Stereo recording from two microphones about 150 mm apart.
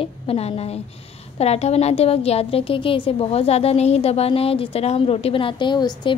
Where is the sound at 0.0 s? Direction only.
40° left (ahead or behind).